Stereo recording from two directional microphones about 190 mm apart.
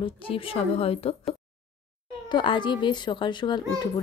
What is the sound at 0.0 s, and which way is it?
A child's voice, 30° left (ahead or behind).